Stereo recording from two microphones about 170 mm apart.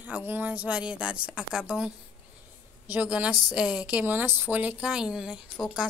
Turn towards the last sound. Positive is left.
turn(degrees=-5)  # may be behind; listen again after turning